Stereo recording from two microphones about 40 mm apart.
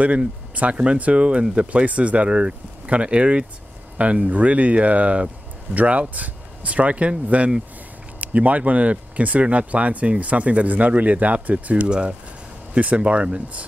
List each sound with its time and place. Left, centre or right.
0.6 s speech: right
11.9 s speech: right